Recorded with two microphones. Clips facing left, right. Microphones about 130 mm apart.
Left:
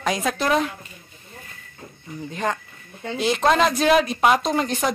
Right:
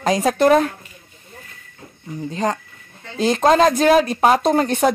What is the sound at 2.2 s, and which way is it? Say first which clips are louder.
Speech: right 4 dB; 35° right (ahead or behind).